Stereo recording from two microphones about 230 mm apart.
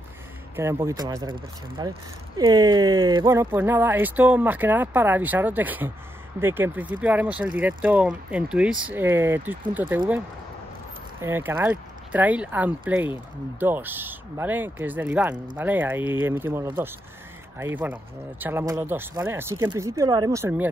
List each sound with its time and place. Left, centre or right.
0.6 s speech: centre
11.1 s speech: centre